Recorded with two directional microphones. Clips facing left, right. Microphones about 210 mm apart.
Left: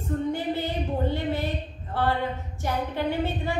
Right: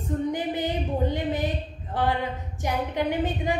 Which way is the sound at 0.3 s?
15° right (ahead or behind).